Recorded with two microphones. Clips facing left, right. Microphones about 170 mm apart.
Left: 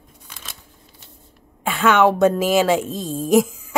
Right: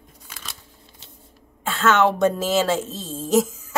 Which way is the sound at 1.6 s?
15° left (ahead or behind).